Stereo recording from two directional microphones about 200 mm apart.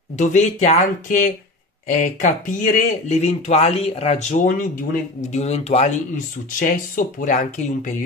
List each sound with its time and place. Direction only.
0.2 s speech: 35° left (ahead or behind)